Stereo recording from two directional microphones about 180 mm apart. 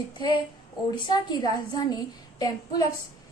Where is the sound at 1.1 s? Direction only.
25° left (ahead or behind).